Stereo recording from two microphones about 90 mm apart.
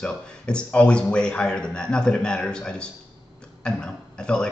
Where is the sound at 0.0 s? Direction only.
10° left (ahead or behind).